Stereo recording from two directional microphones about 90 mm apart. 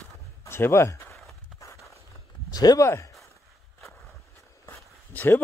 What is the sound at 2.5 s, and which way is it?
Speech, 45° left (ahead or behind).